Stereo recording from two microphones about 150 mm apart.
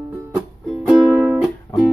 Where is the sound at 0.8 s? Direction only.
Centre (ahead or behind).